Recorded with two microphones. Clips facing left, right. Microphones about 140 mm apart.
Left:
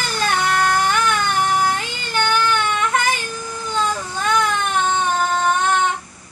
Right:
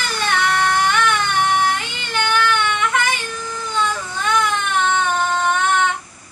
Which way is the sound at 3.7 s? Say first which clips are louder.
Even; 40° left (ahead or behind).